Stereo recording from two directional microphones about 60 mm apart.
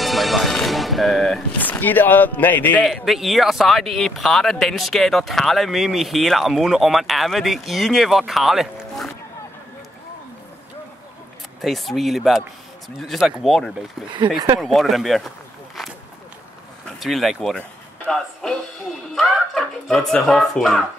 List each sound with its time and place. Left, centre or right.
0.0 s speech: centre
1.6 s speech: left
2.8 s speech: centre
11.6 s speech: centre